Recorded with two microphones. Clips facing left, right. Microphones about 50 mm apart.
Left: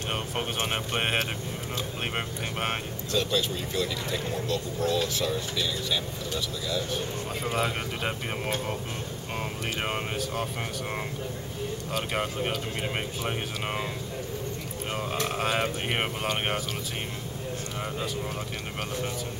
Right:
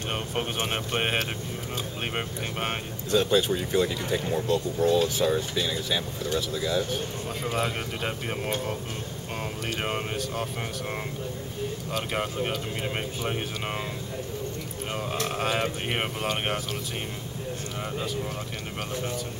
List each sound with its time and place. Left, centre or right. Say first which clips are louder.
0.1 s speech: right 1 dB; centre
3.1 s speech: right 5 dB; right
4.5 s speech: right 5 dB; centre
7.4 s speech: even; centre
9.8 s speech: right 1 dB; centre
11.9 s speech: even; centre
15.2 s speech: even; centre